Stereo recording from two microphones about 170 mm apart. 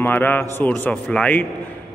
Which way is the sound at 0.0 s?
10° left (ahead or behind).